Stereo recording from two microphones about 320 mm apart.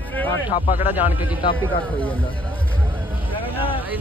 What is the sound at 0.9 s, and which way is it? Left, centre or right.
Speech, centre.